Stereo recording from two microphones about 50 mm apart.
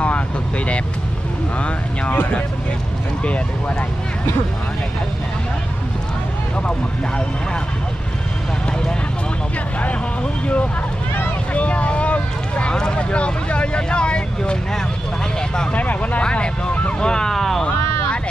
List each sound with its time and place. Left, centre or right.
1.6 s speech: left
11.5 s speech: left
15.7 s speech: left
16.2 s speech: left
17.1 s vehicle: centre